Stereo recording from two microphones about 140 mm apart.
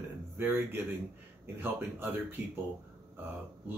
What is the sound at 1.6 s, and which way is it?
Speech, 15° right (ahead or behind).